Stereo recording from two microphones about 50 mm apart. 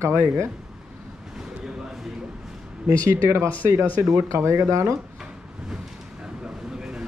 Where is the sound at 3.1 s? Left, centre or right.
Right.